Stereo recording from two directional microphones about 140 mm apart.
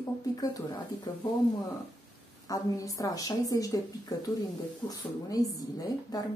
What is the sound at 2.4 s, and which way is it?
A woman's voice, 25° left (ahead or behind).